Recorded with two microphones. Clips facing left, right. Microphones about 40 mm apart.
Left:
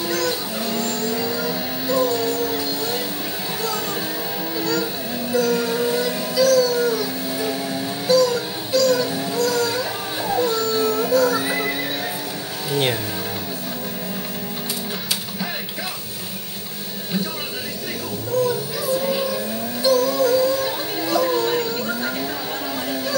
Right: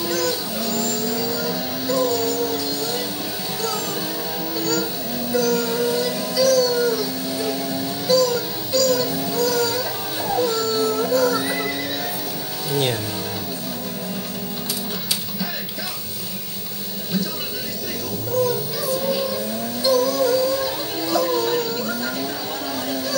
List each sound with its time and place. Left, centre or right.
0.1 s vehicle: centre
0.6 s vehicle: left
4.6 s vehicle: centre
5.4 s a sound: centre
6.5 s howl: centre
8.1 s music: centre
18.8 s music: left